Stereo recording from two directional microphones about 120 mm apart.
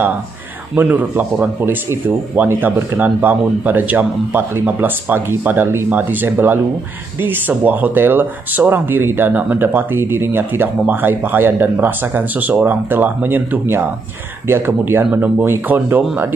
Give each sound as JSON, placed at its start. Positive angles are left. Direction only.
{"t": 0.7, "sound": "speech", "side_deg": -15}